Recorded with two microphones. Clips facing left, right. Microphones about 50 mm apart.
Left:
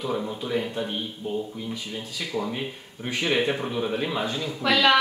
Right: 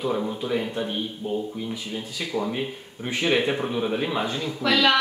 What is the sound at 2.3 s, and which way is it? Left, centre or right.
Speech, centre.